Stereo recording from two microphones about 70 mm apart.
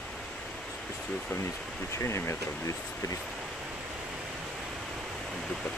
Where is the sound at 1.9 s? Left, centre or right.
Left.